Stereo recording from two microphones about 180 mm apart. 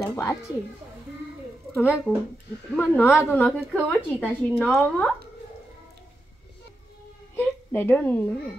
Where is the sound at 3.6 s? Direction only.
5° right (ahead or behind).